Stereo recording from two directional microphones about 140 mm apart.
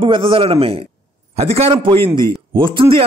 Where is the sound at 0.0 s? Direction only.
40° right (ahead or behind).